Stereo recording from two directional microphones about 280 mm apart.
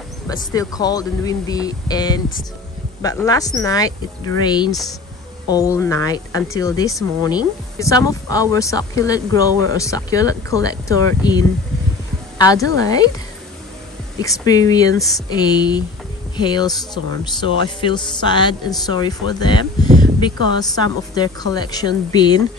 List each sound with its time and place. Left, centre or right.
0.5 s speech: centre
12.4 s speech: centre
14.2 s speech: centre